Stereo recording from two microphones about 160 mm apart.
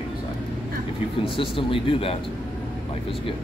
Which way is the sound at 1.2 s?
35° left (ahead or behind).